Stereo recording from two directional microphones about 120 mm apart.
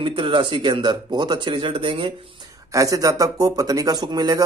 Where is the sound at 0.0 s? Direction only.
45° right (ahead or behind).